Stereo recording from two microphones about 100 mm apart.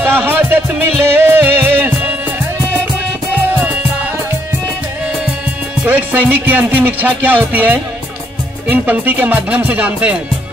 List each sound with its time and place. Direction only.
0.0 s music: 20° right (ahead or behind)
5.9 s music: 15° right (ahead or behind)